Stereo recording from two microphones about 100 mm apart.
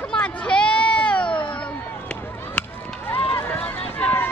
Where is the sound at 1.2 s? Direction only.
55° left (ahead or behind).